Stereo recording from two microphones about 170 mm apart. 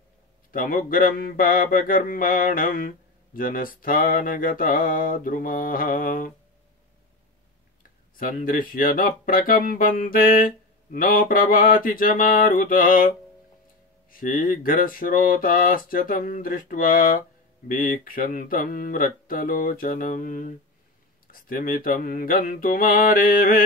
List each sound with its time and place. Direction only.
0.5 s speech: 55° left (ahead or behind)
8.2 s speech: 50° left (ahead or behind)
14.1 s speech: 55° left (ahead or behind)